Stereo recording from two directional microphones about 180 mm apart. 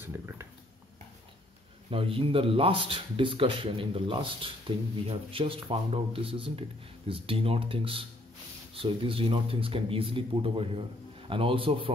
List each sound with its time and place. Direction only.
1.9 s a man's voice: 30° right (ahead or behind)